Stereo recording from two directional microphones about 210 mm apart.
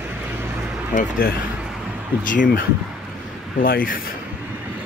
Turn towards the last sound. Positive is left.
turn(degrees=45)  # may be behind; listen again after turning